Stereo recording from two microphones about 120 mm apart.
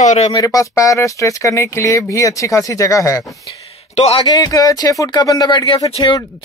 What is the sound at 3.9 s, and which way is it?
Speech, 60° left (ahead or behind).